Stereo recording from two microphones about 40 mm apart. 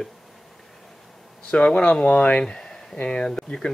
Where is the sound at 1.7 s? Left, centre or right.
Left.